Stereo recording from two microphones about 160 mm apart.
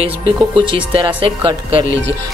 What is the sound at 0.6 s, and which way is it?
Speech, 30° right (ahead or behind).